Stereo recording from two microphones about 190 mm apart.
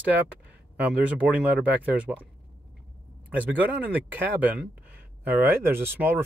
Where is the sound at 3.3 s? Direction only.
10° right (ahead or behind).